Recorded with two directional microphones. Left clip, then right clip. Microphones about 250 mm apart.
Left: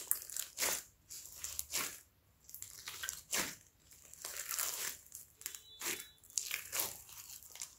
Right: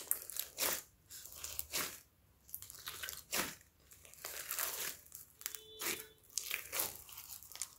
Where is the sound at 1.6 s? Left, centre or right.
Centre.